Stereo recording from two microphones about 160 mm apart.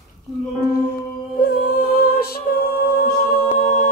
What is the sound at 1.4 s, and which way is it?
Music, 75° left (ahead or behind).